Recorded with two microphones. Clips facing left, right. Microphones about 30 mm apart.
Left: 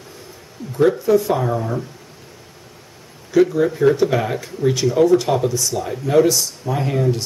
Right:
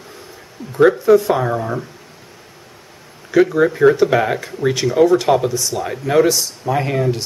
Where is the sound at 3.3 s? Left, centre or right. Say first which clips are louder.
Right 2 dB; right.